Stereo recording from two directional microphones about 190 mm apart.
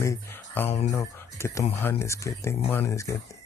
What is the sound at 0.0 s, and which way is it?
Speech, 15° left (ahead or behind).